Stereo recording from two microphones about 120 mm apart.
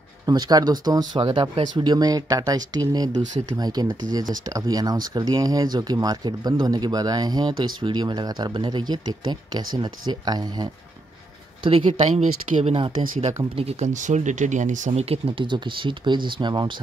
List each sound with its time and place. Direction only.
0.3 s speech: 35° right (ahead or behind)
1.2 s speech: 45° right (ahead or behind)
1.8 s speech: 35° right (ahead or behind)
11.6 s speech: 50° right (ahead or behind)
12.0 s speech: 80° right
13.6 s speech: 60° right (ahead or behind); by 16.7 s 40° right (ahead or behind)